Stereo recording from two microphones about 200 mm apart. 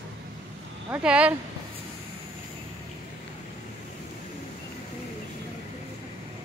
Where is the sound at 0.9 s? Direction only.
5° right (ahead or behind).